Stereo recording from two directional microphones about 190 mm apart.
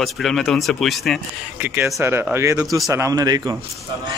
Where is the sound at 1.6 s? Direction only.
10° right (ahead or behind).